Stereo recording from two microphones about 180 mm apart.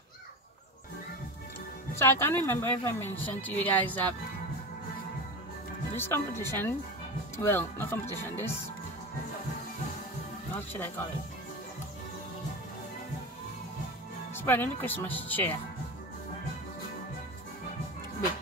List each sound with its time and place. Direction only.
2.0 s speech: 15° left (ahead or behind)
5.9 s speech: 15° left (ahead or behind)
14.3 s speech: 10° left (ahead or behind)